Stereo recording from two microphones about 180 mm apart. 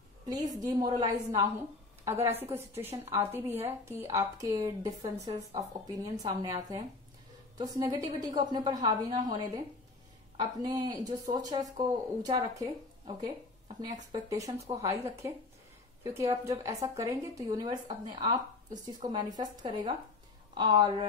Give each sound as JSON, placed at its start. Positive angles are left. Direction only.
{"t": 0.6, "sound": "a woman's voice", "side_deg": -20}